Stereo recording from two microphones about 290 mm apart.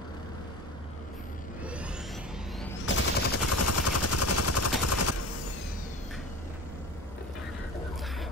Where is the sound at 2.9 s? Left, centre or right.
Left.